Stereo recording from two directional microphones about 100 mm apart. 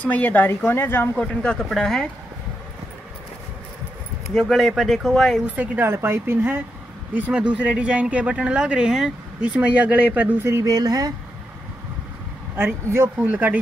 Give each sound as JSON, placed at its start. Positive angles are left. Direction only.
{"t": 0.0, "sound": "speech", "side_deg": 15}
{"t": 1.1, "sound": "speech", "side_deg": 10}
{"t": 4.3, "sound": "speech", "side_deg": 0}
{"t": 5.6, "sound": "speech", "side_deg": -25}
{"t": 12.5, "sound": "speech", "side_deg": -25}